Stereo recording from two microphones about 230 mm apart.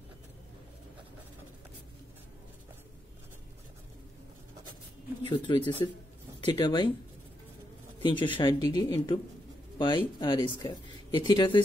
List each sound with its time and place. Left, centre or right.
5.2 s speech: centre
8.0 s speech: left